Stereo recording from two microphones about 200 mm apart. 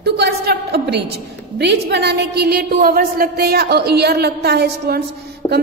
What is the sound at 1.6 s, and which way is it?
A woman's voice, 55° right (ahead or behind).